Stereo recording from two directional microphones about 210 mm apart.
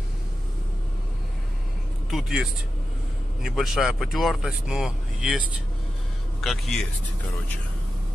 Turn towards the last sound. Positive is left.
turn(degrees=0)  # may be behind; listen again after turning